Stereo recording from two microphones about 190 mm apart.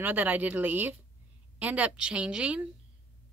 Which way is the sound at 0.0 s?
10° right (ahead or behind).